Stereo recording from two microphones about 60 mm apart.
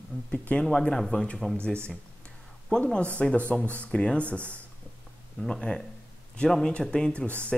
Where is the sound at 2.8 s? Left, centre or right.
Left.